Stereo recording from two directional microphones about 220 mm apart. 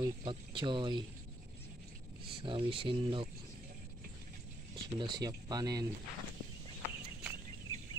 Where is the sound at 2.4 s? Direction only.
25° right (ahead or behind).